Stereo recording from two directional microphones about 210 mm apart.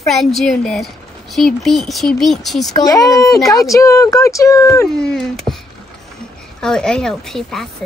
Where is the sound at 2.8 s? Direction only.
15° left (ahead or behind).